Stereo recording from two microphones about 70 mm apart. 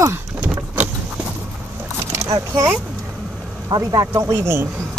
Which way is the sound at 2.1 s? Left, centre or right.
Right.